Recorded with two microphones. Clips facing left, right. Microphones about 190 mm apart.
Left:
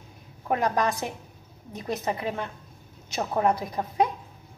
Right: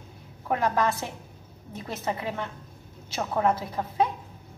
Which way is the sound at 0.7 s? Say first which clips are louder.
Even; 15° left (ahead or behind).